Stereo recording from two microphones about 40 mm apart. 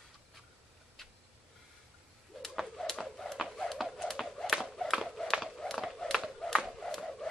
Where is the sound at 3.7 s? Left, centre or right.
Centre.